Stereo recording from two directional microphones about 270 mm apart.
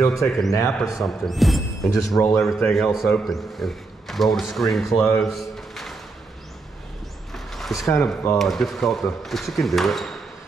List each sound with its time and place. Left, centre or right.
0.0 s a man's voice: centre
7.3 s a sound: centre
7.9 s a man's voice: centre